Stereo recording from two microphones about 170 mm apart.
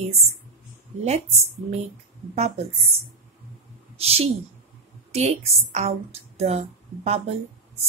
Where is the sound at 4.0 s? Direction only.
35° right (ahead or behind).